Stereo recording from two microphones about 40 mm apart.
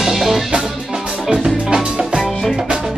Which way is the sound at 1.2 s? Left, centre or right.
Centre.